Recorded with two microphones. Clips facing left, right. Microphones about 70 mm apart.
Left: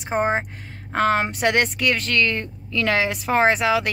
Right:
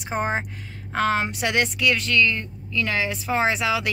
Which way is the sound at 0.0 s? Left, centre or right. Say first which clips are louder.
Left 4 dB; left.